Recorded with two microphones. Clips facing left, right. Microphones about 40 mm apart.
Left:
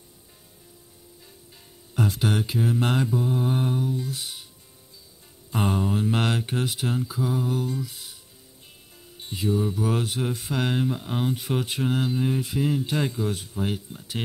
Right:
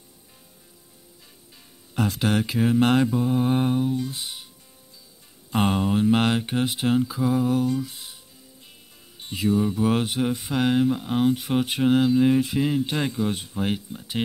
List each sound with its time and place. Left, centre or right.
2.0 s speech: right
2.8 s mantra: right
4.2 s music: right
5.5 s mantra: right
6.1 s speech: centre
6.7 s mantra: right
9.2 s music: right
9.8 s mantra: right
10.5 s speech: centre
11.6 s speech: right
12.2 s mantra: right
12.6 s speech: right